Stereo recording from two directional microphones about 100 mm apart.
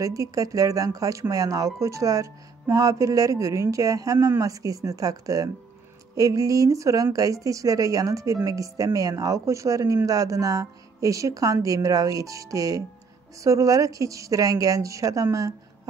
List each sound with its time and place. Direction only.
0.0 s speech: 35° right (ahead or behind)